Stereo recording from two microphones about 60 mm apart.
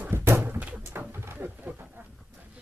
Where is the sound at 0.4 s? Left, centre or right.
Right.